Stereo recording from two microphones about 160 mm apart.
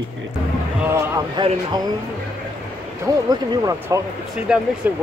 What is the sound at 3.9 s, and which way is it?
Speech, 20° right (ahead or behind).